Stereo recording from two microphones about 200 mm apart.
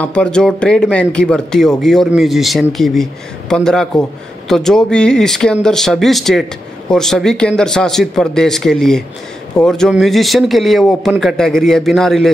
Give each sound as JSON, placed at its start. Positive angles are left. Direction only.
{"t": 0.0, "sound": "speech", "side_deg": 5}